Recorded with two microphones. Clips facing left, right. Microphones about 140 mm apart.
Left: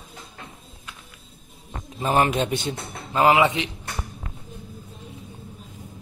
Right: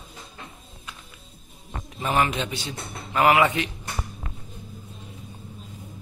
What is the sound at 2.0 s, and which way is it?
Speech, 40° left (ahead or behind).